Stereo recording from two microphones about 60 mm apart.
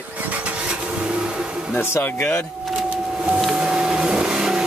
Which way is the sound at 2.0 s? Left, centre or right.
Left.